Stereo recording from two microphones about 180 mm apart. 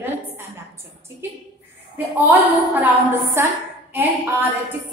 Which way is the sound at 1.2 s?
15° right (ahead or behind).